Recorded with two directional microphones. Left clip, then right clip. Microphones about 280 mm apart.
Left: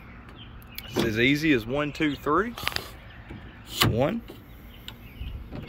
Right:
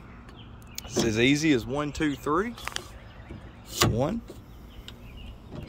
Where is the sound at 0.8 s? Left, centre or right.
Centre.